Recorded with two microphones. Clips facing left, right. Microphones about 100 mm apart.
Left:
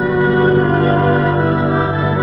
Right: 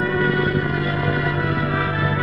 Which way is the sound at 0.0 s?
20° left (ahead or behind).